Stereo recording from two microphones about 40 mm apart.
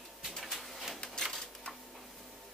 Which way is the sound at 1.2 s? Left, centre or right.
Centre.